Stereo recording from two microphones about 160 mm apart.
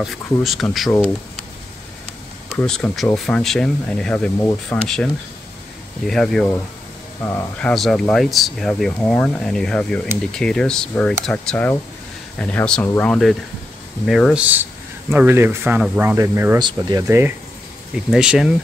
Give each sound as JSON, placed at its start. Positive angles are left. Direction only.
{"t": 0.0, "sound": "speech", "side_deg": 0}
{"t": 2.5, "sound": "speech", "side_deg": 5}
{"t": 16.5, "sound": "speech", "side_deg": -25}
{"t": 17.9, "sound": "speech", "side_deg": -5}